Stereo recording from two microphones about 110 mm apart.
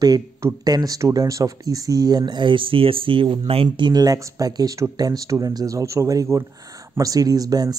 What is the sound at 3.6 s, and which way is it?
Speech, 40° right (ahead or behind).